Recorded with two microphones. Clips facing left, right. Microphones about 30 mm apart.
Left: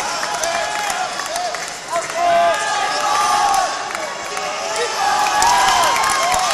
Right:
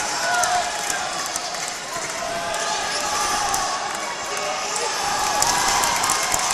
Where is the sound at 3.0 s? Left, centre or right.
Left.